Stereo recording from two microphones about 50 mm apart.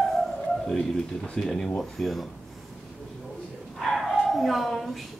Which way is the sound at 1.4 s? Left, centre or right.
Centre.